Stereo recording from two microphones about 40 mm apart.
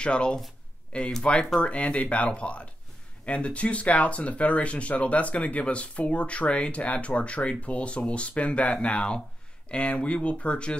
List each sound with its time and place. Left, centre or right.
0.0 s speech: left